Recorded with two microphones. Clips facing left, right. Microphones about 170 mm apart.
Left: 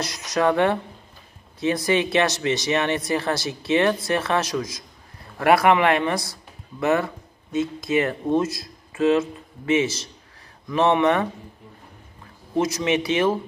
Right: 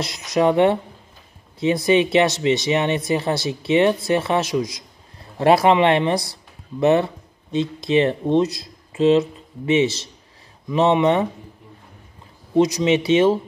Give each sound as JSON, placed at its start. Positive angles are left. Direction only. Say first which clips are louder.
{"t": 0.3, "sound": "speech", "louder": "right 4 dB", "side_deg": -20}
{"t": 12.5, "sound": "speech", "louder": "right 5 dB", "side_deg": -20}